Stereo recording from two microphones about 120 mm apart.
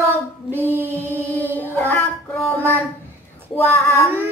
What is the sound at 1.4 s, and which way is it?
Child singing, 15° left (ahead or behind).